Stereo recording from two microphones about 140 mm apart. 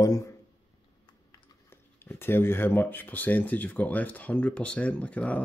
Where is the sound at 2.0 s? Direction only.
15° left (ahead or behind).